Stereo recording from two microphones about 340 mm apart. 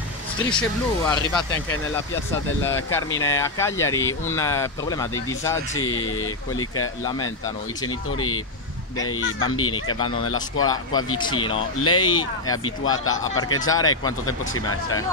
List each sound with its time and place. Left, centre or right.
0.5 s speech: centre
5.8 s speech: left
8.9 s speech: left
9.8 s speech: centre
11.5 s speech: left